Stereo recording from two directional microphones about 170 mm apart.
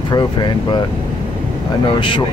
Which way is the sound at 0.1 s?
25° left (ahead or behind).